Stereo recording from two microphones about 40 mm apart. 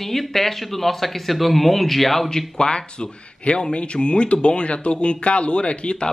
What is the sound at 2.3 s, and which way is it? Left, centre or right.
Speech, centre.